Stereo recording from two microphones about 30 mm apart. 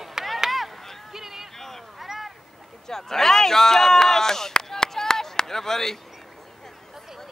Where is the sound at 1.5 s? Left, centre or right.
Centre.